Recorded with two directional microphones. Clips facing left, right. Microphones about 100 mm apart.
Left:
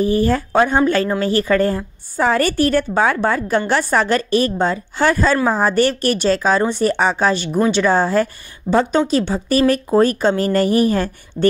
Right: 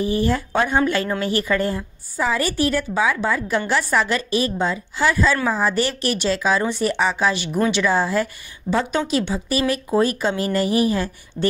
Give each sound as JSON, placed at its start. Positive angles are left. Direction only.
{"t": 0.0, "sound": "a woman's voice", "side_deg": 40}
{"t": 2.1, "sound": "a woman's voice", "side_deg": 50}